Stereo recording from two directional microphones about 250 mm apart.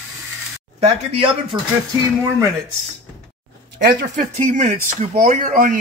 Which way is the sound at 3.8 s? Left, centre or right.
Right.